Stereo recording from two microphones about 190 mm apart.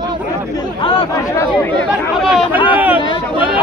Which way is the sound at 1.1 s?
15° left (ahead or behind).